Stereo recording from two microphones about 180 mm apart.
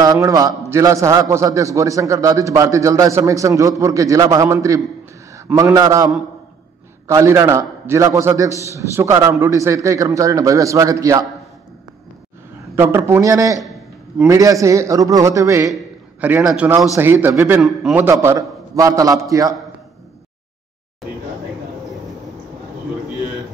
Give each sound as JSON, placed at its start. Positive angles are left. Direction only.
{"t": 0.0, "sound": "a man's voice", "side_deg": -20}
{"t": 12.7, "sound": "a man's voice", "side_deg": -15}
{"t": 13.6, "sound": "a sound", "side_deg": 0}
{"t": 14.2, "sound": "a man's voice", "side_deg": -20}
{"t": 17.6, "sound": "a man's voice", "side_deg": 0}
{"t": 18.0, "sound": "a man's voice", "side_deg": -15}